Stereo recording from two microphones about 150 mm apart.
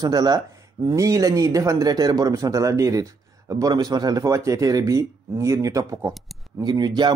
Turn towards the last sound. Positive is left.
turn(degrees=-30)  # may be behind; listen again after turning